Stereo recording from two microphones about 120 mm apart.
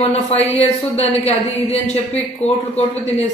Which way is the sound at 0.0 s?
60° left (ahead or behind).